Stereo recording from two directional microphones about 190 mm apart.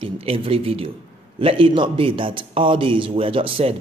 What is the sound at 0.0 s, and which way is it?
A man's voice, 30° right (ahead or behind).